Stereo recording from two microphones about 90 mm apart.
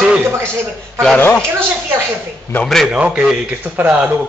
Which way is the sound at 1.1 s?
20° left (ahead or behind).